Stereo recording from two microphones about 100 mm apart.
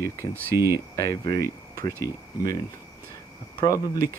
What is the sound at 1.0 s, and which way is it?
Speech, 35° left (ahead or behind).